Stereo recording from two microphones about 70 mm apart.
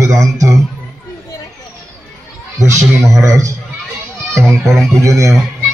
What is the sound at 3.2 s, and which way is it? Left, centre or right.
Speech, right.